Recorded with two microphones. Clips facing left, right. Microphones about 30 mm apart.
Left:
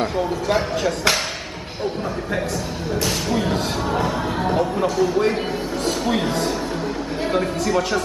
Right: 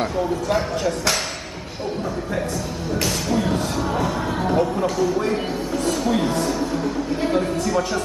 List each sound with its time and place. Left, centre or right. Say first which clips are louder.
0.0 s speech: left 1 dB; left
4.5 s speech: right 1 dB; centre
6.0 s speech: even; left